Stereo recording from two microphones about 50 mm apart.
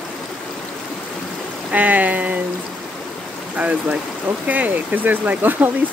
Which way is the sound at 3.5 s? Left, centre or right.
Right.